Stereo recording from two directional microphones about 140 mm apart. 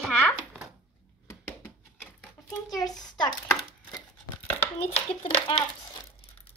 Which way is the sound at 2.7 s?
30° left (ahead or behind).